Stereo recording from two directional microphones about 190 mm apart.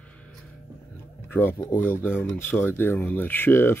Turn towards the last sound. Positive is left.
turn(degrees=10)  # may be behind; listen again after turning